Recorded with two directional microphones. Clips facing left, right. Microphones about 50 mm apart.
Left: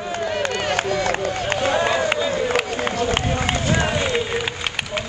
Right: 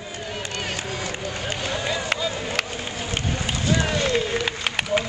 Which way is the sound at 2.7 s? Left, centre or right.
Left.